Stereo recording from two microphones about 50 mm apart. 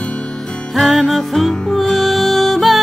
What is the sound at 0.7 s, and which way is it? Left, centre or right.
Music, centre.